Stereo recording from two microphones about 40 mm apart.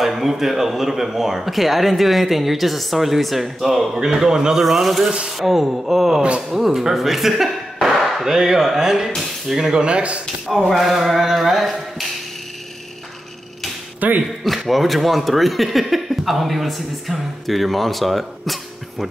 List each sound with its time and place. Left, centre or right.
0.0 s speech: centre
4.6 s speech: centre
7.9 s a sound: centre
8.3 s speech: centre
9.1 s speech: centre
9.6 s speech: centre
9.8 s a man's voice: right
10.8 s speech: centre
13.9 s speech: right
14.4 s speech: centre